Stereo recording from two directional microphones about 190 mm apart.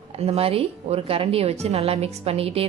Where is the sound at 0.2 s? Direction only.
30° right (ahead or behind).